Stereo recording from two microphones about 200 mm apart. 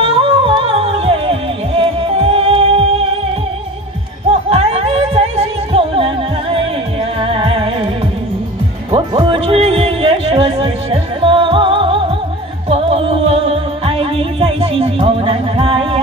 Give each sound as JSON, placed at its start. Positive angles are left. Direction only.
{"t": 0.0, "sound": "music", "side_deg": -25}
{"t": 4.3, "sound": "music", "side_deg": -30}
{"t": 8.9, "sound": "music", "side_deg": -25}